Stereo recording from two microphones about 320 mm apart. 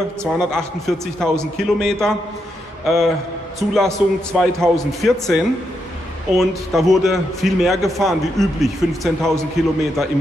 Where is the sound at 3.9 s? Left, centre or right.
Centre.